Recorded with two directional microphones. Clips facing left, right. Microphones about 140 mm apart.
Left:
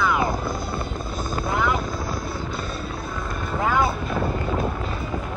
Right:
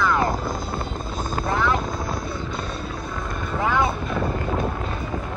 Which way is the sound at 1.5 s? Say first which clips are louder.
Right 1 dB; 10° left (ahead or behind).